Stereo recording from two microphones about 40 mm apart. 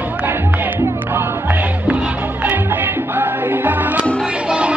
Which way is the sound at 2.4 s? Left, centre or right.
Right.